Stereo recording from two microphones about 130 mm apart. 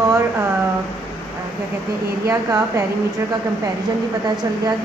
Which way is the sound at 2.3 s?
20° right (ahead or behind).